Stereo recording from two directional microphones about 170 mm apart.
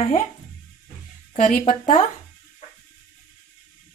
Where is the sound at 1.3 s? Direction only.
50° left (ahead or behind).